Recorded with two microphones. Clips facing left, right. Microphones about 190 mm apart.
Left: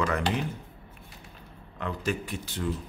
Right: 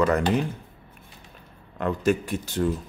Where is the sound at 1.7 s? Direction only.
50° right (ahead or behind).